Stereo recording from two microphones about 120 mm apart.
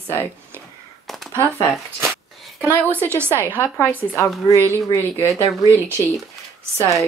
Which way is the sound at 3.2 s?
15° left (ahead or behind).